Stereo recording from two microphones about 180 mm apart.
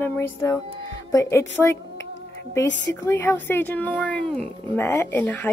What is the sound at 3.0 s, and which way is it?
Speech, 15° left (ahead or behind).